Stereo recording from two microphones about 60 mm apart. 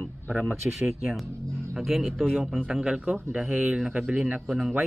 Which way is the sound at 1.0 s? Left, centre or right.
Centre.